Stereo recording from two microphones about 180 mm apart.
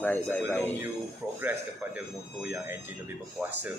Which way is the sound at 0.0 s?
10° left (ahead or behind).